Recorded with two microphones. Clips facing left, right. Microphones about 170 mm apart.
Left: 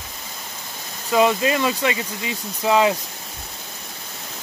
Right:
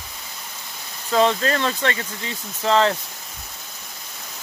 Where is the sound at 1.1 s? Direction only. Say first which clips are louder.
Left 1 dB; 10° left (ahead or behind).